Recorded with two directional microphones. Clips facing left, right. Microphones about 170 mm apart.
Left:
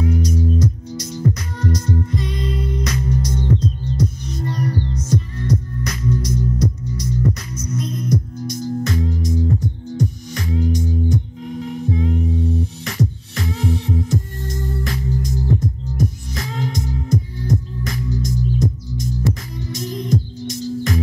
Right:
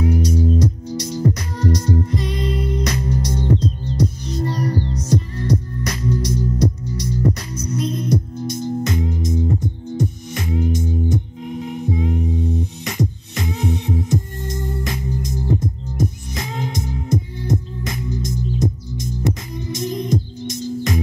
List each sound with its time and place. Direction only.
0.0 s music: 35° right (ahead or behind)
11.9 s music: 5° right (ahead or behind)